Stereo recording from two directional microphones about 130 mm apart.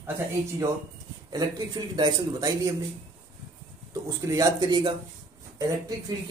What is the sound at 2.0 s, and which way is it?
Speech, 30° right (ahead or behind).